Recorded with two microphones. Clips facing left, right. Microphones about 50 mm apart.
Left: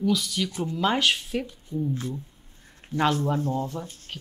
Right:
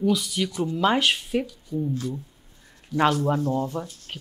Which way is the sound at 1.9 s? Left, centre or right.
Left.